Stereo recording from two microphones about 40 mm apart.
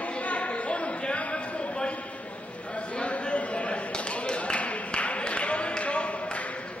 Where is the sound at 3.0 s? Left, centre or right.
Left.